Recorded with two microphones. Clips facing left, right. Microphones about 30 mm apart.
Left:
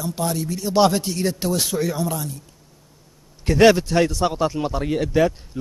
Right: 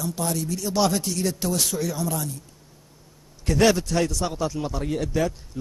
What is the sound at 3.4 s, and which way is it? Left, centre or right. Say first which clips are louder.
A man's voice: left 5 dB; left.